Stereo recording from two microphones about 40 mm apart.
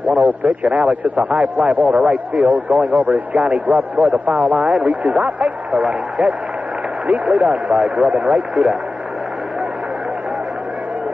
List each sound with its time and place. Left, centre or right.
0.0 s a man's voice: right